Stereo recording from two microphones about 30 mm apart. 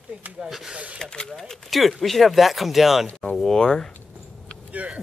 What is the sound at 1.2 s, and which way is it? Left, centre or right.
Speech, centre.